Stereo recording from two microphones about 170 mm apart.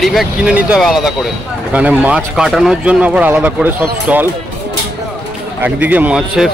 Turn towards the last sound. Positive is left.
turn(degrees=-5)  # may be behind; listen again after turning